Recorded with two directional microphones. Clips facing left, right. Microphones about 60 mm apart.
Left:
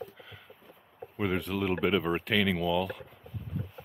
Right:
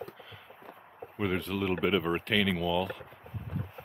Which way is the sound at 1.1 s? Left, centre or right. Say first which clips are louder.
Left 1 dB; centre.